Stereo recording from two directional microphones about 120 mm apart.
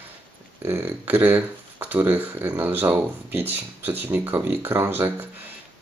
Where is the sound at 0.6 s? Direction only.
20° right (ahead or behind).